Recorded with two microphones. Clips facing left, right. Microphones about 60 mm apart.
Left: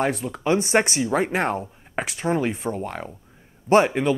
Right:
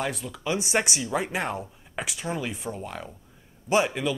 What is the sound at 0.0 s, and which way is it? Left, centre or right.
Speech, left.